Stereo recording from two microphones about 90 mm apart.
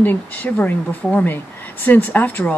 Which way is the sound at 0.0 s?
20° left (ahead or behind).